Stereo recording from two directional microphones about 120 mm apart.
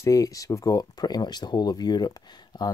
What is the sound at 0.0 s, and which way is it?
Speech, 30° left (ahead or behind).